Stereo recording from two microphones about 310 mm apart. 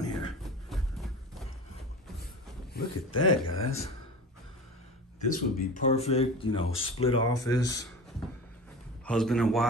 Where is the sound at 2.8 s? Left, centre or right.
Left.